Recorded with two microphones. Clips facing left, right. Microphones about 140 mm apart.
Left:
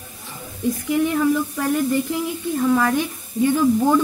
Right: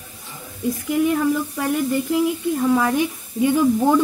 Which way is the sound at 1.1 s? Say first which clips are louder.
Even; 5° right (ahead or behind).